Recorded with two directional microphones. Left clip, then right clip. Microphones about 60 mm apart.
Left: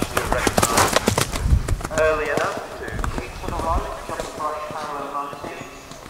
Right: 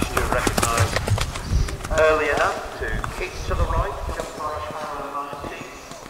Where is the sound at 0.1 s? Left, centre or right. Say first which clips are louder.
Left 2 dB; centre.